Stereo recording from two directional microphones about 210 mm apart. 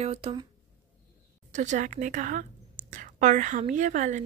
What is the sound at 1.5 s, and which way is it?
A woman's voice, 35° right (ahead or behind).